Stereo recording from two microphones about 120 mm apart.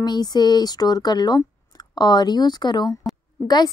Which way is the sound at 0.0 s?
35° left (ahead or behind).